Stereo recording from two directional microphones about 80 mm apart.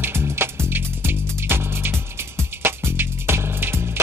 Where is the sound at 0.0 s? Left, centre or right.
Right.